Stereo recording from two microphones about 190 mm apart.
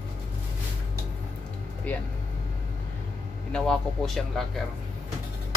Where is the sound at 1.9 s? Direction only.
10° left (ahead or behind).